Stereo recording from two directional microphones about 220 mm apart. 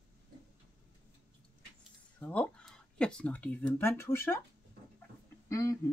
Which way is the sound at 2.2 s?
5° left (ahead or behind).